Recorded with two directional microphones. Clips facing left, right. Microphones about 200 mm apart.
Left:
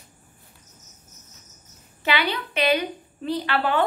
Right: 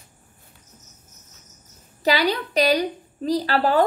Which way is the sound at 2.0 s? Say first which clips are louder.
Right 4 dB; 40° right (ahead or behind).